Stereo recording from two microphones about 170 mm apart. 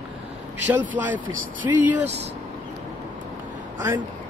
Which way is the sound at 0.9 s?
10° right (ahead or behind).